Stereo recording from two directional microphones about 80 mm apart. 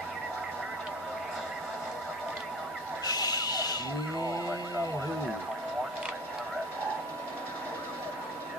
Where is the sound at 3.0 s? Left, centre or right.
Left.